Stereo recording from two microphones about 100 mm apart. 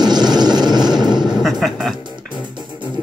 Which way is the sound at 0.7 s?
5° right (ahead or behind).